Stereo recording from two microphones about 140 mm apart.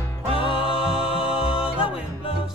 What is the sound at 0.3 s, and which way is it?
Music, 40° left (ahead or behind).